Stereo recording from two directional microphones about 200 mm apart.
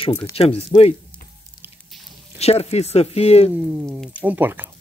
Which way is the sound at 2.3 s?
30° left (ahead or behind).